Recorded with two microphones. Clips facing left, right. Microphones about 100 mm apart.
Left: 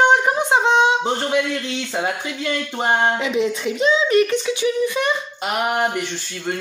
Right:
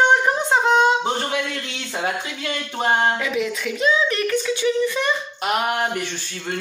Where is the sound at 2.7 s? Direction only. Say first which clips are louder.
Even; 20° left (ahead or behind).